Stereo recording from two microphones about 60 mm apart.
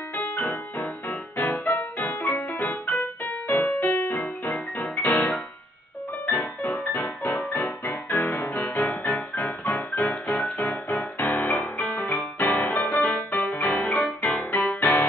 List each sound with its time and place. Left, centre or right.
0.1 s music: left
0.4 s music: left
2.5 s keyboard: left
3.3 s music: left
5.0 s music: left
7.4 s keyboard: centre
7.8 s music: left; by 12.0 s centre
12.1 s music: left; by 14.4 s centre
14.5 s music: left